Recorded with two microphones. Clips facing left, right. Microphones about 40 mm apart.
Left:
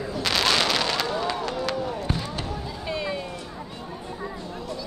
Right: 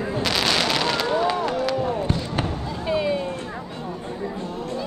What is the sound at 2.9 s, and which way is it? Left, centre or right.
Music, centre.